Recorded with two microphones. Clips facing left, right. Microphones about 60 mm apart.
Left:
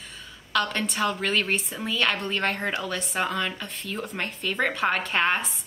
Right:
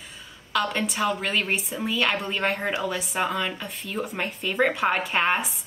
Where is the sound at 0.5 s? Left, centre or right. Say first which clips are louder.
Right 1 dB; centre.